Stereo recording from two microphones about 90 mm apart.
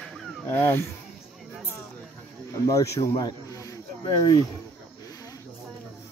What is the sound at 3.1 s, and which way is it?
Snake, 45° left (ahead or behind).